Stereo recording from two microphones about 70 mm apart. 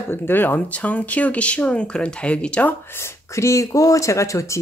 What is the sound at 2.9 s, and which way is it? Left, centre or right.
Speech, left.